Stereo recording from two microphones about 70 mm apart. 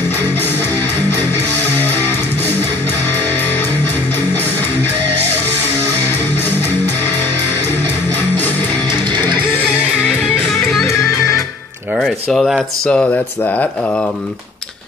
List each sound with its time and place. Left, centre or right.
10.5 s music: centre
10.9 s music: left
12.0 s a sound: centre
12.8 s speech: centre